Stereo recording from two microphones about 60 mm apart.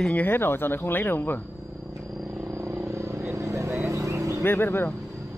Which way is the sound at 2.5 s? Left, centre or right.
Right.